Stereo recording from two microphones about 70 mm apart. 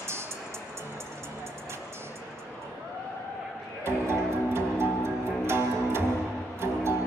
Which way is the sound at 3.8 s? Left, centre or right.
Right.